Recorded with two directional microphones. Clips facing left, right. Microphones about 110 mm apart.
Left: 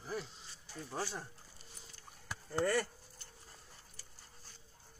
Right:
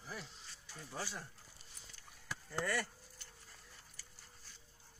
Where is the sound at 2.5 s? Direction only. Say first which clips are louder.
Left 6 dB; 35° left (ahead or behind).